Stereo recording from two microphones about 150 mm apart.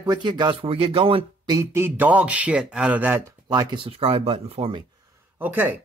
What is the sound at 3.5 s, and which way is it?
Speech, 30° right (ahead or behind).